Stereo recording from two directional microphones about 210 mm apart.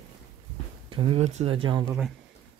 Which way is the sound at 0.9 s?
25° right (ahead or behind).